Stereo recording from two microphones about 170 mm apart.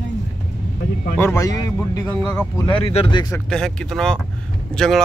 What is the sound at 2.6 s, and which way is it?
Speech, 30° left (ahead or behind).